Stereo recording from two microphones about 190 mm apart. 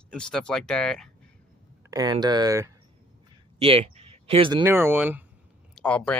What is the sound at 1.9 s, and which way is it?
Speech, 20° right (ahead or behind).